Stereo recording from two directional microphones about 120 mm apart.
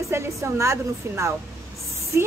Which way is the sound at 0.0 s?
25° right (ahead or behind).